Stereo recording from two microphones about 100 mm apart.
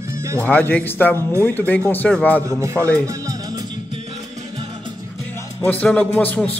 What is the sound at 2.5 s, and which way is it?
Speech, 30° right (ahead or behind).